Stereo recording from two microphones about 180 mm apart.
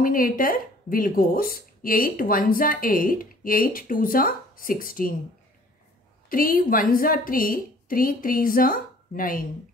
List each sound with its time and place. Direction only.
0.0 s speech: 50° left (ahead or behind)
6.2 s speech: 50° left (ahead or behind)